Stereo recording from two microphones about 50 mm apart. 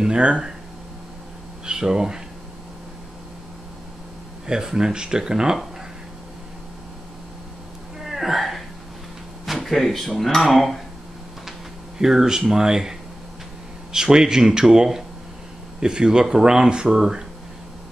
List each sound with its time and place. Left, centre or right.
0.0 s speech: centre
1.7 s speech: centre
4.5 s speech: centre
8.0 s hiccup: centre
9.5 s speech: centre
12.0 s speech: centre
13.9 s speech: centre